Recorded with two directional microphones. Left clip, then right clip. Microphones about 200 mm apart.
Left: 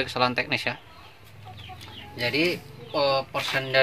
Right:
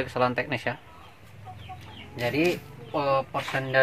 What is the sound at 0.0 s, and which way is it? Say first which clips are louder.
Speech: left 1 dB; 10° right (ahead or behind).